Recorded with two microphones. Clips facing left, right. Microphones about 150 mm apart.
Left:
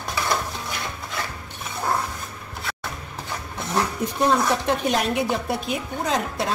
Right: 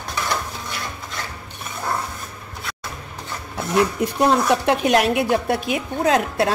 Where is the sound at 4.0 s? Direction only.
65° right (ahead or behind).